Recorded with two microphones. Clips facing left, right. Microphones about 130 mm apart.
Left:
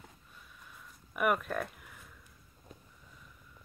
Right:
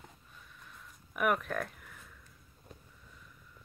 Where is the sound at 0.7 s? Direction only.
Centre (ahead or behind).